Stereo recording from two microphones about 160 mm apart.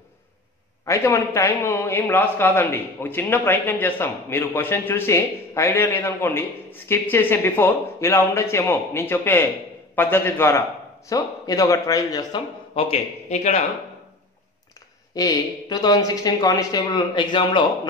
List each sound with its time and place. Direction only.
0.8 s a man's voice: 20° left (ahead or behind)
12.7 s speech: 35° left (ahead or behind)
15.1 s speech: 25° left (ahead or behind)